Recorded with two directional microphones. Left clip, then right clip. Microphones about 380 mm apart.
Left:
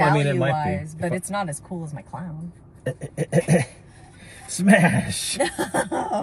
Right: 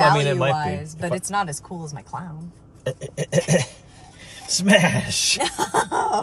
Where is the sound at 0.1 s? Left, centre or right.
Right.